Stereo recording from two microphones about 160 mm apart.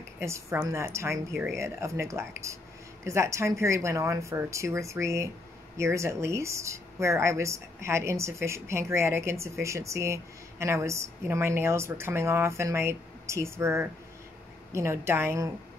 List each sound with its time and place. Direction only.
0.2 s speech: 15° right (ahead or behind)